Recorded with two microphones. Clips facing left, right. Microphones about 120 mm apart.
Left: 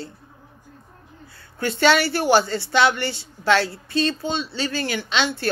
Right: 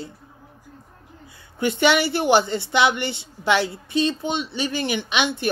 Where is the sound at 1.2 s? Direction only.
15° right (ahead or behind).